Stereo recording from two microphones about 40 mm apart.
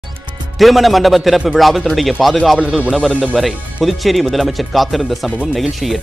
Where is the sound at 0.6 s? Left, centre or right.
Centre.